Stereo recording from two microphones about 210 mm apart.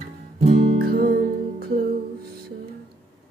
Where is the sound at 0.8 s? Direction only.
45° right (ahead or behind).